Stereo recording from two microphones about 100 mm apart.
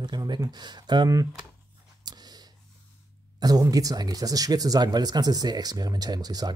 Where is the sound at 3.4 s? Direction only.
40° right (ahead or behind).